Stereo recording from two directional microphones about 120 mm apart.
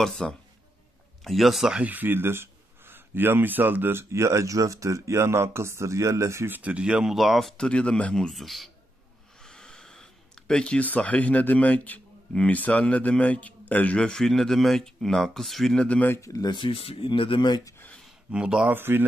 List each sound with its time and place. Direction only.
0.0 s speech: 5° left (ahead or behind)
9.4 s a sound: 5° left (ahead or behind)
10.5 s a man's voice: 10° left (ahead or behind)
16.2 s speech: 30° left (ahead or behind)
17.6 s a sound: 20° left (ahead or behind)
18.3 s speech: 5° right (ahead or behind)
18.7 s speech: 20° right (ahead or behind)